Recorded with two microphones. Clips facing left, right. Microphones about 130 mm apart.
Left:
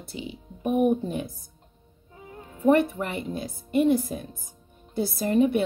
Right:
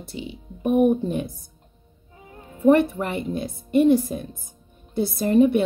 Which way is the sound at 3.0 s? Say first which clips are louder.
Right 3 dB; 75° right (ahead or behind).